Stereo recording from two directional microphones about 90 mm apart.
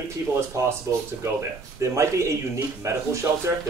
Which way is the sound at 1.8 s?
35° right (ahead or behind).